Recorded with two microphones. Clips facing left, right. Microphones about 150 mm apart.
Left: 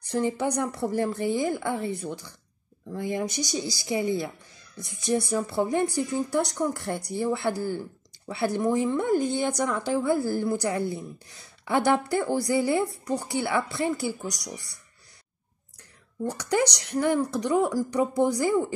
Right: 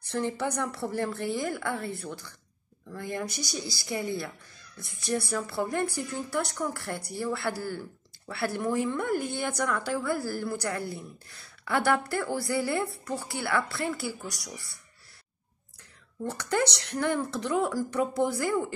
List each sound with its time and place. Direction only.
0.0 s a woman's voice: 15° left (ahead or behind)
16.3 s a woman's voice: 15° left (ahead or behind)